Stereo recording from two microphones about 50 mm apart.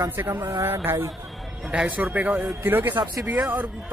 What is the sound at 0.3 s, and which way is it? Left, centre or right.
Speech, right.